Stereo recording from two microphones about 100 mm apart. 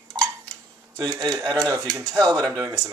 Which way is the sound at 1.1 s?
45° right (ahead or behind).